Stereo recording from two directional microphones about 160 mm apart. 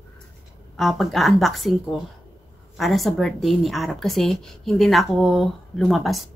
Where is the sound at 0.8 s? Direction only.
Centre (ahead or behind).